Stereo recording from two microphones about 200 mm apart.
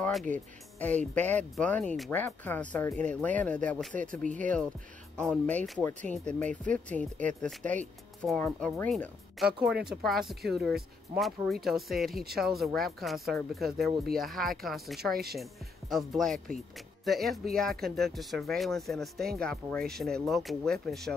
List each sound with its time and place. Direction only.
0.0 s speech: 5° left (ahead or behind)
3.9 s speech: 40° right (ahead or behind)
5.1 s speech: 5° left (ahead or behind)